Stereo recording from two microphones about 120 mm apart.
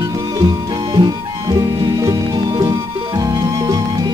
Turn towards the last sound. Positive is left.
turn(degrees=-30)  # may be behind; listen again after turning